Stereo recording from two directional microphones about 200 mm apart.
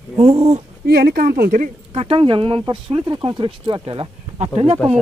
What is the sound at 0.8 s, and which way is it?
Speech, 55° right (ahead or behind).